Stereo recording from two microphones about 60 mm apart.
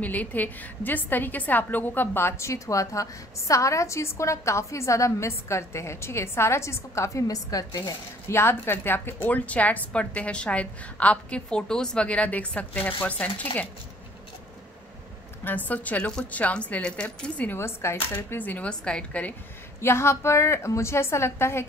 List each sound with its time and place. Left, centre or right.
0.0 s a woman's voice: left
7.5 s speech: left
8.3 s a woman's voice: left
15.4 s a woman's voice: left
17.5 s speech: left
18.7 s a woman's voice: centre
19.8 s a woman's voice: left